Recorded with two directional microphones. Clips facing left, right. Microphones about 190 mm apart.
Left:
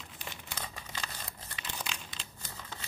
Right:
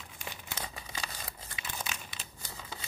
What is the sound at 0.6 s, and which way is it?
Crumpling, 10° right (ahead or behind).